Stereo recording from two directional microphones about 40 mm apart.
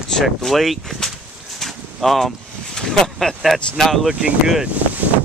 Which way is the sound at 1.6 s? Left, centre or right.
Centre.